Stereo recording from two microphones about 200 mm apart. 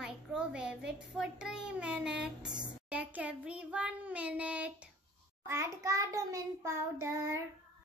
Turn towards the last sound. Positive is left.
turn(degrees=-15)  # may be behind; listen again after turning